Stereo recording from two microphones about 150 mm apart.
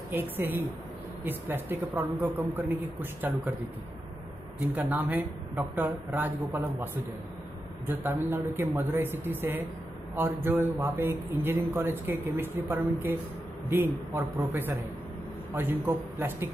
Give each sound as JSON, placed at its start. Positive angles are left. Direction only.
{"t": 0.1, "sound": "speech", "side_deg": -15}
{"t": 4.8, "sound": "speech", "side_deg": -10}
{"t": 7.8, "sound": "speech", "side_deg": -15}